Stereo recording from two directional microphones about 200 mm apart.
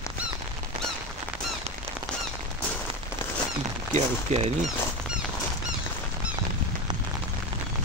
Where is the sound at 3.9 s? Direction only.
35° right (ahead or behind).